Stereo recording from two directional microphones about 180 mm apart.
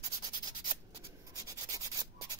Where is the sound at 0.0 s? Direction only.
20° right (ahead or behind).